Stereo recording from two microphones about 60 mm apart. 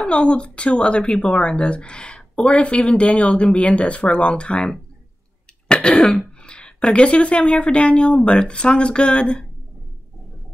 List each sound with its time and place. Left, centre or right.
0.0 s speech: centre